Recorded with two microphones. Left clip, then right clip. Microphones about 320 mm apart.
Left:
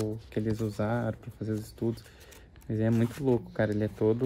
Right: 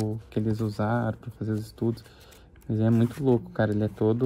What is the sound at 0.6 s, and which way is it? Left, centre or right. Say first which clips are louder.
Speech: right 3 dB; centre.